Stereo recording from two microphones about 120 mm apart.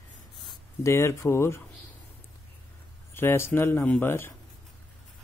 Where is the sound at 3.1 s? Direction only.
20° left (ahead or behind).